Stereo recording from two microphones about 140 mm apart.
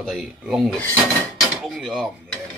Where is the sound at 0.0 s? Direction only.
Centre (ahead or behind).